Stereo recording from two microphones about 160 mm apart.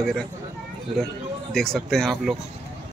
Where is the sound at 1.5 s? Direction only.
5° left (ahead or behind).